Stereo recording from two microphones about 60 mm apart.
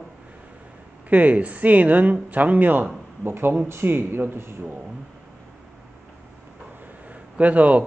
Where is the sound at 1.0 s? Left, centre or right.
Right.